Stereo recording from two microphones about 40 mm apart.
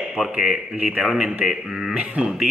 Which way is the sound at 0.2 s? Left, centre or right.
Right.